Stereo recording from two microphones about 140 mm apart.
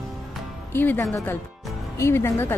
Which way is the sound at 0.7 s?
15° left (ahead or behind).